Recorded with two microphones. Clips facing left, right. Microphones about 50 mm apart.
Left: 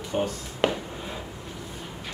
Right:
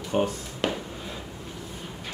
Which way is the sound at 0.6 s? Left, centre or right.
Left.